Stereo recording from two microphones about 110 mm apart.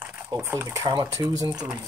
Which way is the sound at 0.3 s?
25° right (ahead or behind).